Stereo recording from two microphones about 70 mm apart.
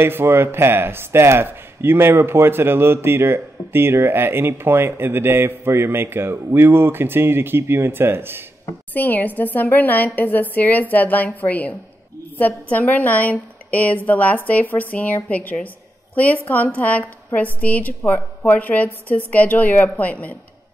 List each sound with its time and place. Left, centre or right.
0.0 s speech: right
8.9 s a woman's voice: left